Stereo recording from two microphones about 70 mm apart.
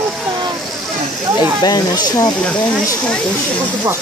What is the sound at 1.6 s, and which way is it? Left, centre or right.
Speech, left.